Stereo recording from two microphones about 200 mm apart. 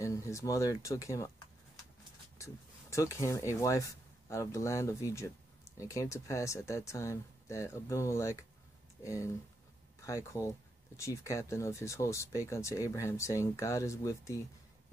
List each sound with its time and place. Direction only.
0.0 s speech: 15° left (ahead or behind)
2.3 s speech: 15° left (ahead or behind)